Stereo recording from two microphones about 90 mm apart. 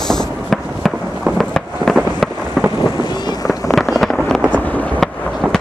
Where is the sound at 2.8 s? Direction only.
55° left (ahead or behind).